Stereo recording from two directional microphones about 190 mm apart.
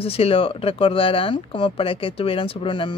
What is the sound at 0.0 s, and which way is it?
Speech, 30° left (ahead or behind).